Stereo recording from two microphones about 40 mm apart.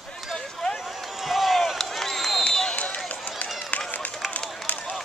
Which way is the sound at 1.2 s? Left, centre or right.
Centre.